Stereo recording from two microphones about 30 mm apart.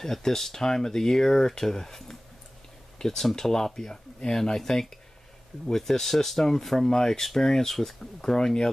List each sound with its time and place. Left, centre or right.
0.0 s speech: centre